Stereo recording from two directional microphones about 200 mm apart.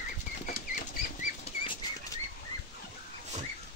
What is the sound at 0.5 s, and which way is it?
Bird flight, 40° left (ahead or behind).